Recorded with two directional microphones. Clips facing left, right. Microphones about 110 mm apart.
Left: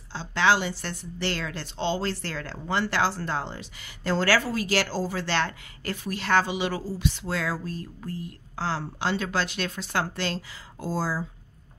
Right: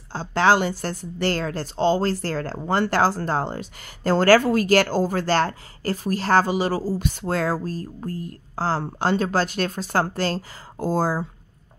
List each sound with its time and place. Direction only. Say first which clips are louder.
0.1 s a woman's voice: right 4 dB; 45° right (ahead or behind)